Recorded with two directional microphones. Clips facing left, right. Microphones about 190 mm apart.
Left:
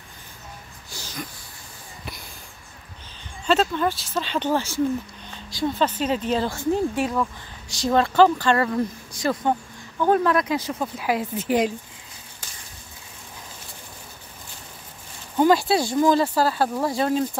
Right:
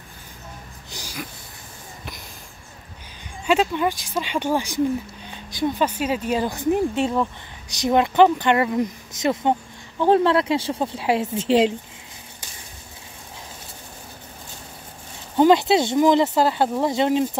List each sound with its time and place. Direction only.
0.9 s a sound: 10° right (ahead or behind)
3.4 s speech: 10° right (ahead or behind)
15.3 s speech: 20° right (ahead or behind)